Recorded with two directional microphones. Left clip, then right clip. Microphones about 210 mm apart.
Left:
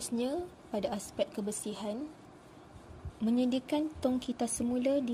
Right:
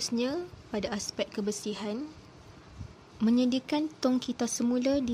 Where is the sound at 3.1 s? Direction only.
20° right (ahead or behind).